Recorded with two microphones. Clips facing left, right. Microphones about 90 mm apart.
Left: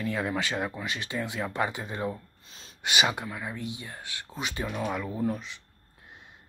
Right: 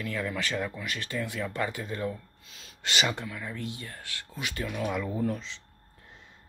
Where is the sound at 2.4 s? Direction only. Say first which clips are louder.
Left 1 dB; 30° left (ahead or behind).